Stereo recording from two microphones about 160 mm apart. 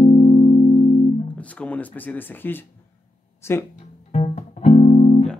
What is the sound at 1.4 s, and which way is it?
Speech, 10° left (ahead or behind).